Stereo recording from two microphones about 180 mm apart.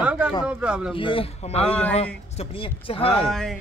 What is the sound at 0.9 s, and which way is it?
A man's voice, 30° left (ahead or behind).